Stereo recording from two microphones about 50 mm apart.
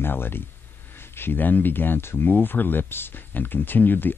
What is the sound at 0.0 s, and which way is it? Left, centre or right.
Speech, left.